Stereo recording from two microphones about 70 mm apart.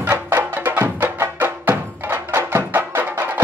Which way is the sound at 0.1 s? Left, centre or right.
Right.